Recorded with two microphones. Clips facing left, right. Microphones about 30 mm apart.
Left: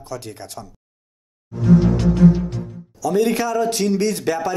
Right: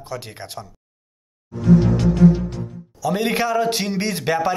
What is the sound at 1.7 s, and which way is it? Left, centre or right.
Music, centre.